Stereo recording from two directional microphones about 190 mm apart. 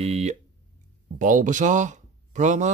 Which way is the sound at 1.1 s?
45° right (ahead or behind).